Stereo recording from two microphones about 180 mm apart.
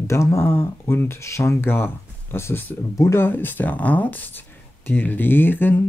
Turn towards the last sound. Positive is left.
turn(degrees=10)  # may be behind; listen again after turning